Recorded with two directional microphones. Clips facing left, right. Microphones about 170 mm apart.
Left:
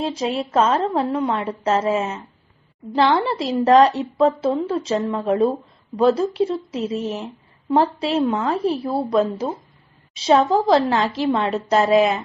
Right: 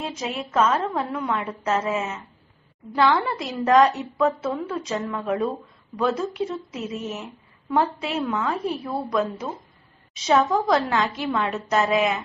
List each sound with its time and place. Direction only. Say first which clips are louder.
0.0 s a woman's voice: left 7 dB; 30° left (ahead or behind)